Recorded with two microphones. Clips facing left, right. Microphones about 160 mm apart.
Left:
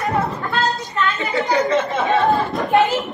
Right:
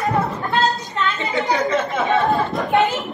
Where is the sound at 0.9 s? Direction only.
20° right (ahead or behind).